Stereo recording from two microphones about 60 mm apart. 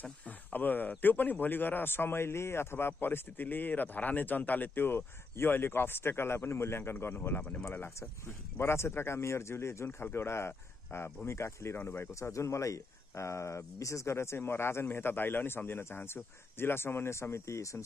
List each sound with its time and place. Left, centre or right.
0.5 s speech: left
11.8 s speech: left
12.1 s speech: left